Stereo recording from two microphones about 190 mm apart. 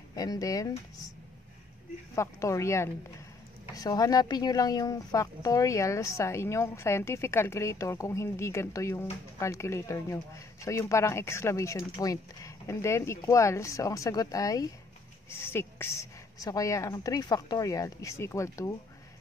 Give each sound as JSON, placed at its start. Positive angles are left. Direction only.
{"t": 0.1, "sound": "speech", "side_deg": 20}
{"t": 2.1, "sound": "speech", "side_deg": 15}